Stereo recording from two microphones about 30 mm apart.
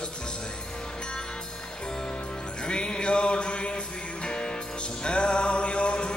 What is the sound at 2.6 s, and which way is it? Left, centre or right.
Music, left.